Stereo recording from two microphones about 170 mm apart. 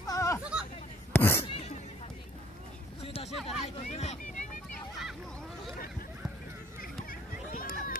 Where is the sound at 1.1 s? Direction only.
15° left (ahead or behind).